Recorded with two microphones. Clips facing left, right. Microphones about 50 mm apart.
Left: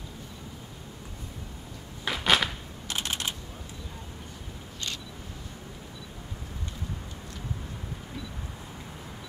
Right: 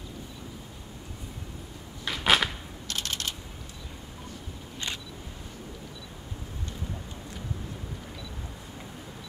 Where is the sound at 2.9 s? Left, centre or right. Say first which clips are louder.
Left 1 dB; centre.